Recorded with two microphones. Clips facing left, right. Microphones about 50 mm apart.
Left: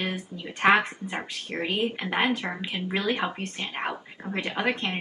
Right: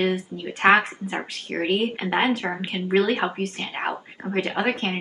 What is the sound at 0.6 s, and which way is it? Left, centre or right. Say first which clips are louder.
Speech: right 3 dB; right.